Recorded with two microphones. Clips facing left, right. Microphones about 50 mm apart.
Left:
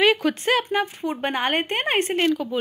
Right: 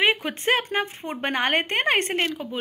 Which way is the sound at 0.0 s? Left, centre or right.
Right.